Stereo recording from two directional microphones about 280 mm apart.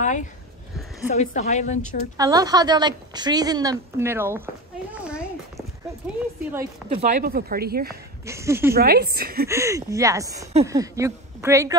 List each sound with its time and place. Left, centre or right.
0.0 s a sound: left
1.1 s a woman's voice: left
2.1 s a woman's voice: centre
4.9 s a sound: centre
6.9 s speech: right
7.9 s speech: centre
8.7 s speech: right
9.5 s a woman's voice: centre